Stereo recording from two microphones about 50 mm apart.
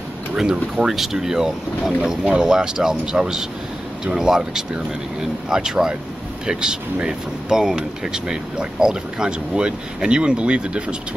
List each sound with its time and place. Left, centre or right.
0.4 s speech: centre